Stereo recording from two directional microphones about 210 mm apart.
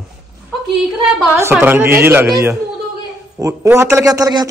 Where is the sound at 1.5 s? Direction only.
10° right (ahead or behind).